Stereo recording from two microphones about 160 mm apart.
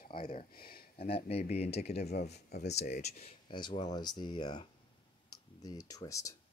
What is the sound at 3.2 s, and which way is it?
Speech, 30° left (ahead or behind).